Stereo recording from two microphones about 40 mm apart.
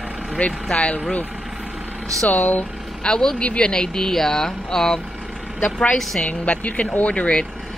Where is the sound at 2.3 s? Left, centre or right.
Left.